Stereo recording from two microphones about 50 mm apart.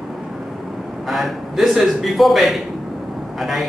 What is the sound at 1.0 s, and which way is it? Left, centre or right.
A man's voice, centre.